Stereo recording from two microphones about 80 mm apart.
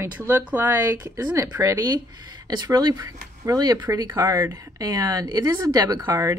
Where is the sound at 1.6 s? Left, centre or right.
Right.